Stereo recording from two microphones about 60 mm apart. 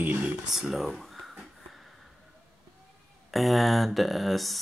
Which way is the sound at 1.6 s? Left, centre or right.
Centre.